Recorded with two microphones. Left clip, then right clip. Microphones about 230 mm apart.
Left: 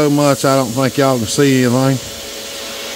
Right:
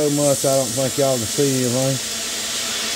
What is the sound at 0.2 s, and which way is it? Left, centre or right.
Speech, left.